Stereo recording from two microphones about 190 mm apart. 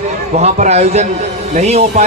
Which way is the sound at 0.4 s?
35° right (ahead or behind).